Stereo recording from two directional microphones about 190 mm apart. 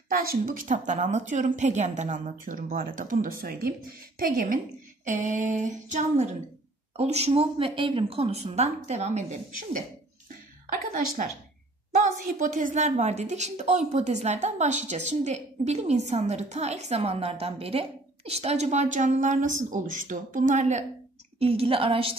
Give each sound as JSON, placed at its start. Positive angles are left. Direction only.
{"t": 0.1, "sound": "a woman's voice", "side_deg": -50}
{"t": 10.7, "sound": "a woman's voice", "side_deg": -50}
{"t": 12.0, "sound": "a woman's voice", "side_deg": -40}